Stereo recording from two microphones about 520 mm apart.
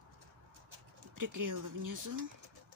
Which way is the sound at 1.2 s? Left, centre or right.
Right.